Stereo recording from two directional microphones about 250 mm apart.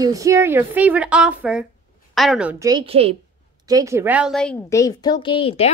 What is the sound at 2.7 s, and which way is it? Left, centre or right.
Speech, right.